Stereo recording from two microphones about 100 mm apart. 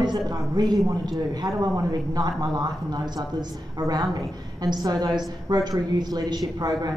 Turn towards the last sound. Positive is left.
turn(degrees=-40)  # may be behind; listen again after turning